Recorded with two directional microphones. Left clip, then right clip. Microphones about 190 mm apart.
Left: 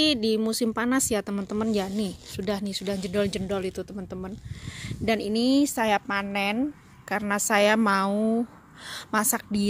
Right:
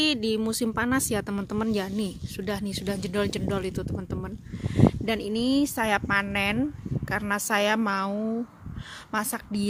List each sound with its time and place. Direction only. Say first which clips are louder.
0.0 s a woman's voice: left 2 dB; 5° left (ahead or behind)